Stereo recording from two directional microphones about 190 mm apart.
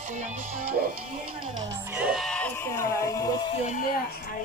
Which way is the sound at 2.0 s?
Centre (ahead or behind).